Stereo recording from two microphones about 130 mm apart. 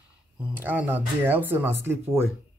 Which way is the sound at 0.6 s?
15° right (ahead or behind).